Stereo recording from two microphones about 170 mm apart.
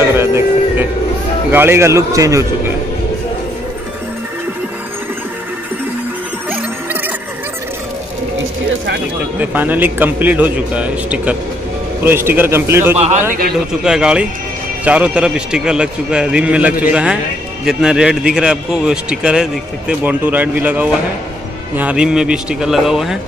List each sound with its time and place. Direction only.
0.0 s music: 15° right (ahead or behind)
1.5 s a man's voice: 15° right (ahead or behind)
9.4 s a man's voice: 10° right (ahead or behind)
12.9 s speech: 40° right (ahead or behind)
13.8 s a man's voice: 5° right (ahead or behind)